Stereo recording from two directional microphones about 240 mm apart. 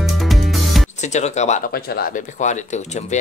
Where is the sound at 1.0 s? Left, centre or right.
Left.